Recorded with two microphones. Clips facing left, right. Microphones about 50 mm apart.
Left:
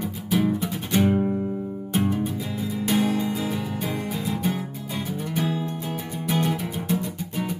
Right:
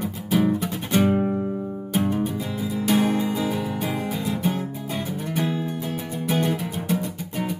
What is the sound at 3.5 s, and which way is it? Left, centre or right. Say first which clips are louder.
Music: right 2 dB; centre.